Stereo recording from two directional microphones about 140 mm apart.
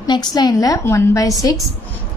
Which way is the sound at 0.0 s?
30° left (ahead or behind).